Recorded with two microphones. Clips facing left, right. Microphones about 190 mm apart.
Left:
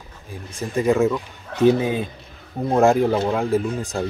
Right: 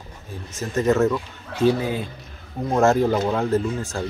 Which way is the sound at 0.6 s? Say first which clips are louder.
Left 1 dB; 10° left (ahead or behind).